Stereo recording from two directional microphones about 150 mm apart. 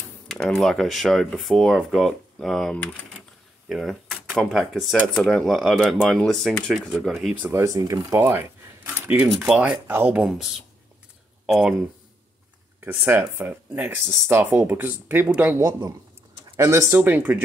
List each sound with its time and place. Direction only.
0.3 s speech: centre (ahead or behind)
7.5 s speech: 20° right (ahead or behind); by 11.7 s 5° right (ahead or behind)
12.8 s speech: 10° right (ahead or behind)